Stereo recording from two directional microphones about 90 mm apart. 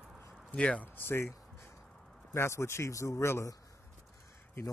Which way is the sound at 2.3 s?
30° left (ahead or behind).